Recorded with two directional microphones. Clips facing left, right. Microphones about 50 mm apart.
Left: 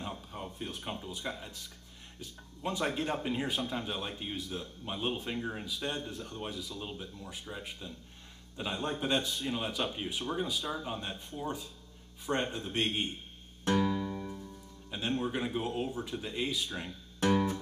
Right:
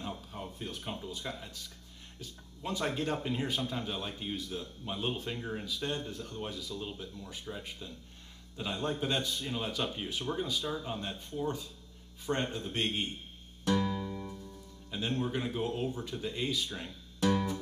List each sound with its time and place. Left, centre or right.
0.0 s a sound: centre
0.7 s speech: centre
13.7 s music: left
14.9 s speech: centre
17.2 s guitar: left